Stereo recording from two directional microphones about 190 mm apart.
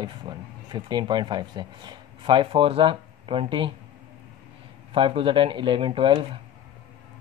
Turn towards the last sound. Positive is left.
turn(degrees=-25)  # may be behind; listen again after turning